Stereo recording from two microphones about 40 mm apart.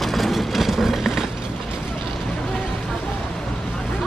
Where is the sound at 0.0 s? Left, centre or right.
Centre.